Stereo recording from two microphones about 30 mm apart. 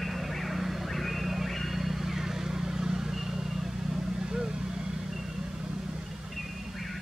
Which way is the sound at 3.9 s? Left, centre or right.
Right.